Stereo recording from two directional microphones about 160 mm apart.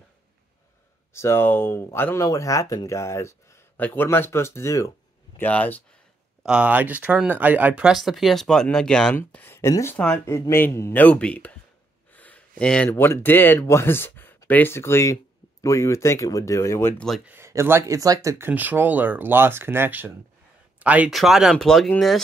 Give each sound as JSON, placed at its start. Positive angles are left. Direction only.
{"t": 1.1, "sound": "speech", "side_deg": 15}
{"t": 6.4, "sound": "speech", "side_deg": -5}
{"t": 9.9, "sound": "speech", "side_deg": 10}
{"t": 17.2, "sound": "speech", "side_deg": -15}